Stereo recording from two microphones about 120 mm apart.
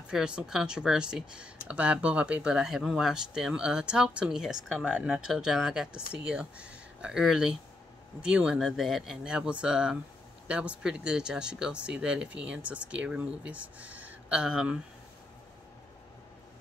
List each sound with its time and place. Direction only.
0.1 s speech: 5° right (ahead or behind)